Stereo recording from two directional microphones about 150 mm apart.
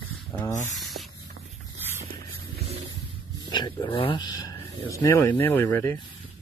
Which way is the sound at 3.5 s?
30° left (ahead or behind).